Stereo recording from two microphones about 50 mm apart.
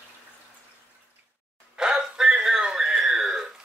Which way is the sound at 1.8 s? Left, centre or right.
Centre.